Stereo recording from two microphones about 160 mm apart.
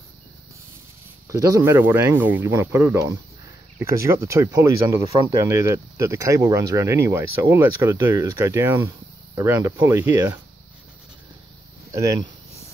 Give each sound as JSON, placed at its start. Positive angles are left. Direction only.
{"t": 1.3, "sound": "speech", "side_deg": -15}
{"t": 11.9, "sound": "speech", "side_deg": -20}